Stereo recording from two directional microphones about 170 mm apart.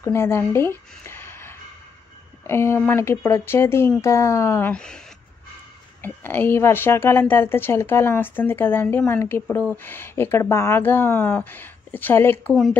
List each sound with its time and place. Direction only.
0.0 s a woman's voice: 15° left (ahead or behind)
6.0 s a woman's voice: 10° left (ahead or behind)